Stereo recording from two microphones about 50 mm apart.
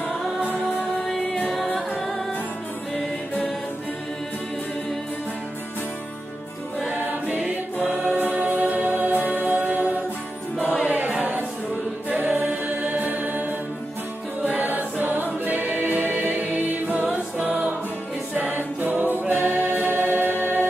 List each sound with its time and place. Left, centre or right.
1.0 s music: centre
6.9 s choir: right
7.9 s choir: centre
8.2 s music: right
10.7 s choir: right
14.4 s music: right
18.5 s choir: right